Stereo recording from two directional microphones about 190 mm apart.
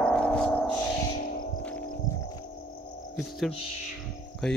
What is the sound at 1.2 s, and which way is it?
Music, 45° left (ahead or behind).